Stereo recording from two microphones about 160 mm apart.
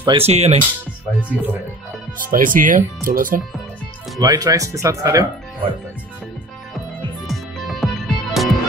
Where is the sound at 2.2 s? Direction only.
60° right (ahead or behind).